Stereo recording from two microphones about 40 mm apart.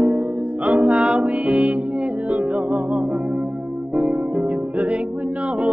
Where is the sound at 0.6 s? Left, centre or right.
Right.